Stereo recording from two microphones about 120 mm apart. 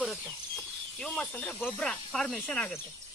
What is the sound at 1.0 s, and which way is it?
Speech, 10° left (ahead or behind).